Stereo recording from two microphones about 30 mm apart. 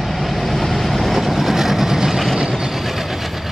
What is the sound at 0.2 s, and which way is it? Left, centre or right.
Vehicle, centre.